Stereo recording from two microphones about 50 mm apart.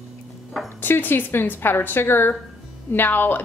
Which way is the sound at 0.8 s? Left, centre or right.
Left.